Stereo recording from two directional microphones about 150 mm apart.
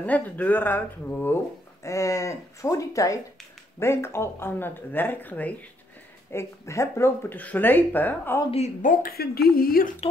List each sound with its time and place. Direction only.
0.0 s speech: 10° left (ahead or behind)
8.5 s speech: 45° left (ahead or behind)
9.0 s speech: 90° left